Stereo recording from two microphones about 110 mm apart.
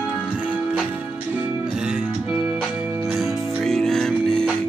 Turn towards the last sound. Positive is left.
turn(degrees=10)  # may be behind; listen again after turning